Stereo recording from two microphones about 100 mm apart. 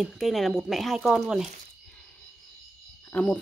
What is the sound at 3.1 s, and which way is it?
Speech, 20° left (ahead or behind).